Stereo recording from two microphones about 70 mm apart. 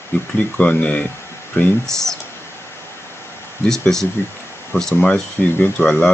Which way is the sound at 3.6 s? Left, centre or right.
Centre.